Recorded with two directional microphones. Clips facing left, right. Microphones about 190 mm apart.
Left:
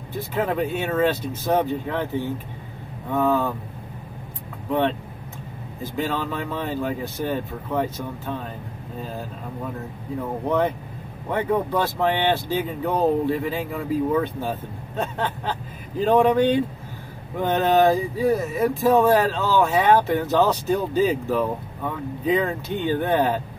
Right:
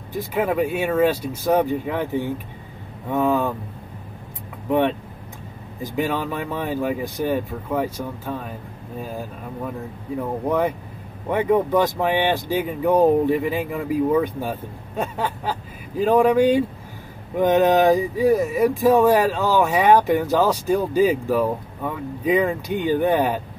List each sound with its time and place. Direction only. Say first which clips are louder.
0.1 s speech: right 2 dB; 15° right (ahead or behind)
4.6 s speech: right 3 dB; 15° right (ahead or behind)
11.3 s speech: right 4 dB; 15° right (ahead or behind)